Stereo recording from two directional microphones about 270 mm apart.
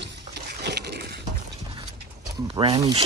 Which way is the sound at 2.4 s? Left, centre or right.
Right.